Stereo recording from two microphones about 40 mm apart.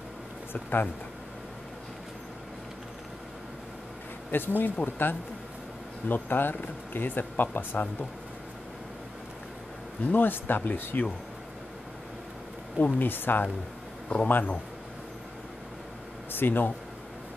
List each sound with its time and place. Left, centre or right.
0.5 s speech: left
4.3 s speech: left
10.0 s speech: left
12.7 s speech: left
14.0 s speech: left
16.3 s speech: left